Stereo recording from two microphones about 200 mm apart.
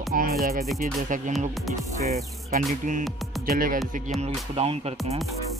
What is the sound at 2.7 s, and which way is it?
Speech, 40° right (ahead or behind).